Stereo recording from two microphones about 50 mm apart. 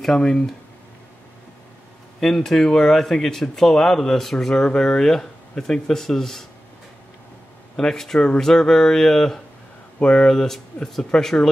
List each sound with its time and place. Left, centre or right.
0.0 s speech: centre
2.1 s speech: centre
7.7 s speech: centre